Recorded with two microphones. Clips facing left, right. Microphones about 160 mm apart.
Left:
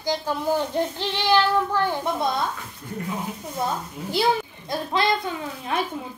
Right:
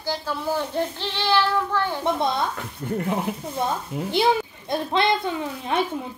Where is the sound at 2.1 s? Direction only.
25° right (ahead or behind).